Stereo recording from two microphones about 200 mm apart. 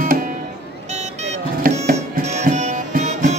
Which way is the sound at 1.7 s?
45° right (ahead or behind).